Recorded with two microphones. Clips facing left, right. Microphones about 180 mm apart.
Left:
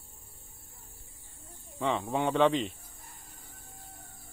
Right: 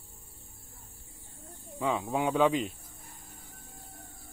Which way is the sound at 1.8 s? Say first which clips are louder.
Even; centre (ahead or behind).